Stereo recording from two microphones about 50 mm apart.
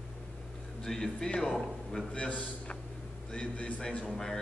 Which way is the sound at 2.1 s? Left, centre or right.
Left.